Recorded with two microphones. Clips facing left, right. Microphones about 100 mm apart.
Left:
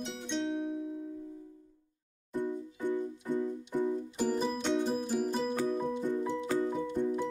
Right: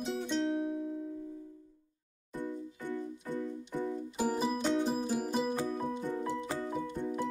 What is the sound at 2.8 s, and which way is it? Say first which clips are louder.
Keyboard: left 6 dB; 20° left (ahead or behind).